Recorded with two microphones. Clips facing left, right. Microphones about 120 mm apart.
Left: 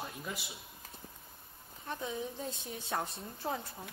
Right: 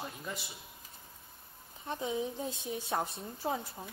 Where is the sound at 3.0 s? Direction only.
Centre (ahead or behind).